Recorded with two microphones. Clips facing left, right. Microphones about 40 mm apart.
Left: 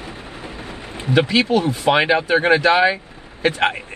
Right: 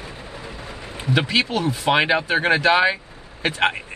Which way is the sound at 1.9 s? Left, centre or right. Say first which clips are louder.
Left 3 dB; centre.